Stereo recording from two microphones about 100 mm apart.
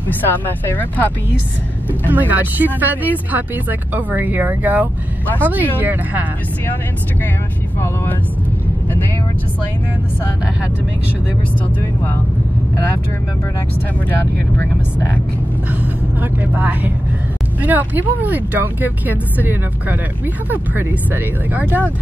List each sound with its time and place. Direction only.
0.7 s speech: 15° left (ahead or behind)
2.0 s speech: 15° right (ahead or behind)
7.8 s speech: 25° left (ahead or behind)
15.7 s speech: 20° right (ahead or behind)